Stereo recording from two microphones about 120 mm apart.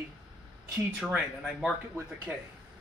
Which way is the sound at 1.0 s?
5° right (ahead or behind).